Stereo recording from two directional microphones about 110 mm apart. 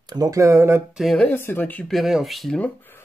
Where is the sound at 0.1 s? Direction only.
35° right (ahead or behind).